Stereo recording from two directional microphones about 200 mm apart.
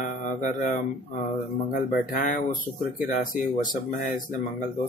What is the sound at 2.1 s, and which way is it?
Mantra, 40° left (ahead or behind).